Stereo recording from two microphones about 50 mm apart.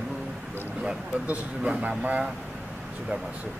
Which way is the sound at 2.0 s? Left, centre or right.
Right.